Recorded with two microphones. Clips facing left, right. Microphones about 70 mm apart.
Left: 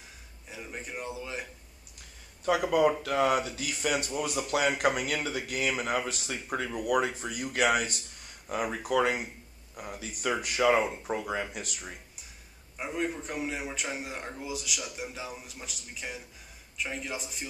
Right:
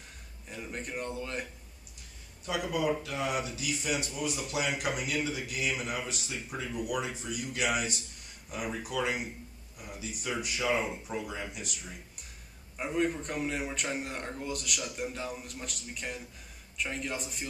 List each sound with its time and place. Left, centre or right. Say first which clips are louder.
0.5 s speech: right 1 dB; centre
2.4 s speech: left 6 dB; left
12.7 s speech: right 2 dB; centre